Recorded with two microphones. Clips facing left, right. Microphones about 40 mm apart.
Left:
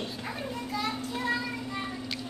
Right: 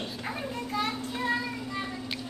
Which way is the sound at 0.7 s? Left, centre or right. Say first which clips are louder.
Right 1 dB; right.